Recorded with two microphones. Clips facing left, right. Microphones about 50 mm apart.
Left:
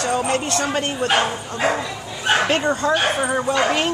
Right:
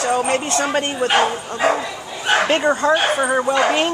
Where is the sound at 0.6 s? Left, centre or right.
Centre.